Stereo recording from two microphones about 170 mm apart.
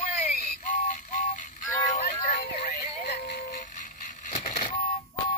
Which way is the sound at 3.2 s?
65° left (ahead or behind).